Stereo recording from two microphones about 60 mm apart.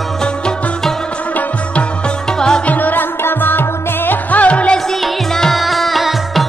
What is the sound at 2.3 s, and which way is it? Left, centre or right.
Music, centre.